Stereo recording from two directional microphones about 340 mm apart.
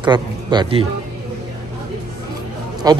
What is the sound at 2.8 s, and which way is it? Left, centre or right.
Speech, centre.